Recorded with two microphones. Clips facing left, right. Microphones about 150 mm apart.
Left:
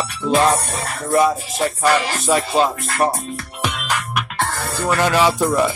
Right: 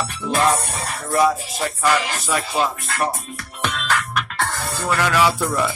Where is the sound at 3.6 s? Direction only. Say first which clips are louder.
Right 1 dB; 10° left (ahead or behind).